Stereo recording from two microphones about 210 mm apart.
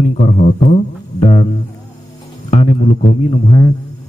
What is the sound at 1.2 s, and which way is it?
Music, 30° left (ahead or behind).